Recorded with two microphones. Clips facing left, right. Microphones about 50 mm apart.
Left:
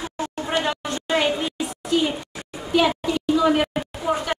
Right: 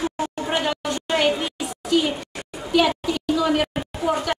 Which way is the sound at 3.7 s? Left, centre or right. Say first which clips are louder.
Right 1 dB; centre.